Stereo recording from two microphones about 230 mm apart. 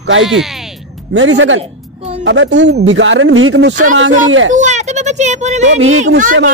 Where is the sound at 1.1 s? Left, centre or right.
Right.